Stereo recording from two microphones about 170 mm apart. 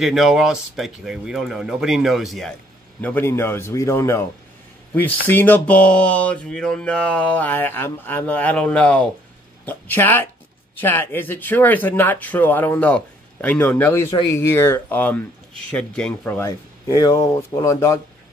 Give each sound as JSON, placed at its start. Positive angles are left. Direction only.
{"t": 0.0, "sound": "speech", "side_deg": 0}
{"t": 3.0, "sound": "speech", "side_deg": 10}